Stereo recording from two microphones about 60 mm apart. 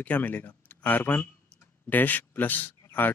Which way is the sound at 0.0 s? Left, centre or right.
Left.